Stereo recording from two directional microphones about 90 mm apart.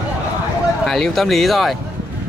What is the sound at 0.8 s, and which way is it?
Speech, 5° left (ahead or behind).